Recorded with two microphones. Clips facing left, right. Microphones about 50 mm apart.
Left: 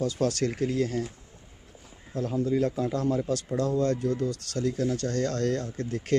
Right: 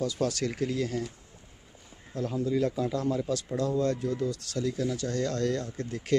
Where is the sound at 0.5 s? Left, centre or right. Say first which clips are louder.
Left 2 dB; centre.